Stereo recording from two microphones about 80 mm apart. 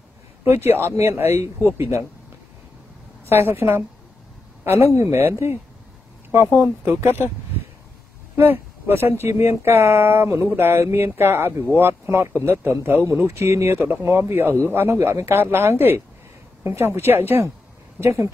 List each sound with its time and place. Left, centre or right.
0.4 s speech: right
3.3 s a woman's voice: right
4.9 s speech: right
6.6 s a woman's voice: right
8.4 s a woman's voice: right